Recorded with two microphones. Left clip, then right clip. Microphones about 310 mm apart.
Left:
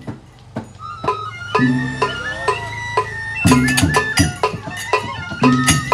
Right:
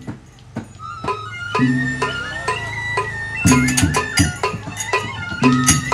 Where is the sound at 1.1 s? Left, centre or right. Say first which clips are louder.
Left 3 dB; left.